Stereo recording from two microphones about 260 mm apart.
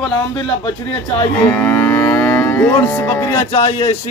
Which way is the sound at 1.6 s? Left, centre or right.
Centre.